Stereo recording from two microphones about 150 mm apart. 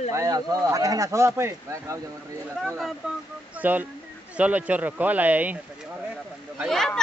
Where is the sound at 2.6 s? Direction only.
Centre (ahead or behind).